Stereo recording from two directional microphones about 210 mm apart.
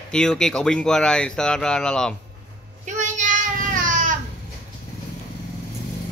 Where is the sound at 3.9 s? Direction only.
40° right (ahead or behind).